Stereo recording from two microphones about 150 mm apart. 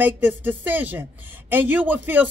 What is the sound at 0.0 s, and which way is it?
Speech, 10° right (ahead or behind).